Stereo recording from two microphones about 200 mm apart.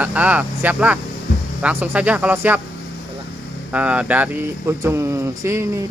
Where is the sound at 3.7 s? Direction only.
5° right (ahead or behind).